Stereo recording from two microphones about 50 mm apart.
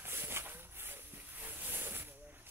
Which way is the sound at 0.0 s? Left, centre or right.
Right.